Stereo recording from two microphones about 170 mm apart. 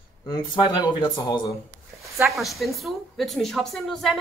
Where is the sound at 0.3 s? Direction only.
25° left (ahead or behind).